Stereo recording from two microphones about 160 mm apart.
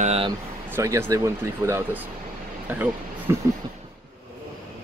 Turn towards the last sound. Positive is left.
turn(degrees=-10)  # may be behind; listen again after turning